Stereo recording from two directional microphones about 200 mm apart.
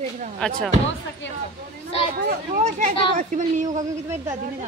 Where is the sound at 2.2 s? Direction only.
35° right (ahead or behind).